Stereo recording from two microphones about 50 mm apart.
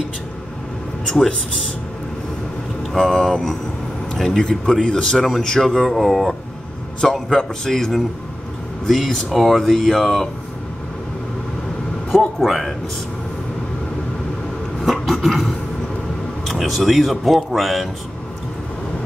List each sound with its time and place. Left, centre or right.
1.0 s speech: centre
2.9 s a man's voice: centre
5.8 s a man's voice: centre
9.6 s a man's voice: centre
12.4 s a man's voice: centre
14.8 s a sound: centre
16.4 s speech: centre